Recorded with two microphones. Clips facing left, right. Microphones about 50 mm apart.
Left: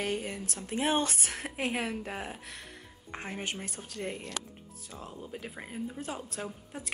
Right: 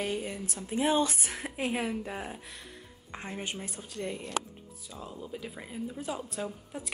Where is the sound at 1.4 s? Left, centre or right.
Left.